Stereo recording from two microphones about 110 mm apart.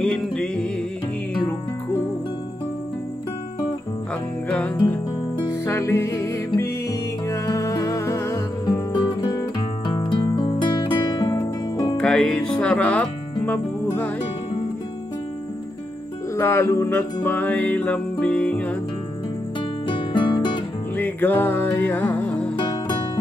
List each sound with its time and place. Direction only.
0.0 s music: 5° left (ahead or behind)
4.5 s music: 15° left (ahead or behind)
5.5 s music: 25° left (ahead or behind)
12.0 s music: 5° left (ahead or behind)
16.3 s music: 25° left (ahead or behind)
19.9 s music: 45° left (ahead or behind)
20.9 s music: 15° left (ahead or behind)
22.6 s music: 45° left (ahead or behind)